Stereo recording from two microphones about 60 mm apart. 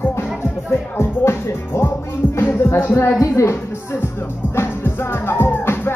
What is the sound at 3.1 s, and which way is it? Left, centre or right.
Music, left.